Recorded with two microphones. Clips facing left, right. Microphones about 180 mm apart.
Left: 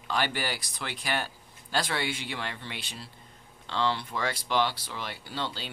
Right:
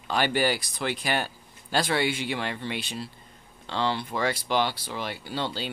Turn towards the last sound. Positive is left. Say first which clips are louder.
# right 5 dB
turn(degrees=-10)  # may be behind; listen again after turning